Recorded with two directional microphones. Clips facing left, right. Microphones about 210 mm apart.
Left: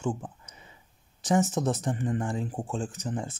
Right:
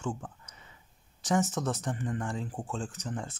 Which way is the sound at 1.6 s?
30° left (ahead or behind).